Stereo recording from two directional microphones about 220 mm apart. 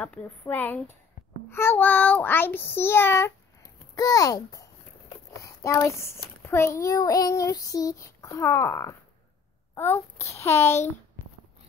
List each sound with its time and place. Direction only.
0.0 s child singing: 5° left (ahead or behind)
3.9 s a child's voice: 15° left (ahead or behind)
6.4 s child singing: 10° left (ahead or behind)